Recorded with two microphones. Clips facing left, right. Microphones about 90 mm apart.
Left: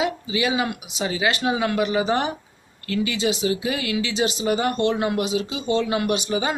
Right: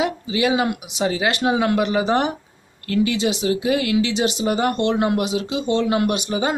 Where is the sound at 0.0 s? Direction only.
55° right (ahead or behind).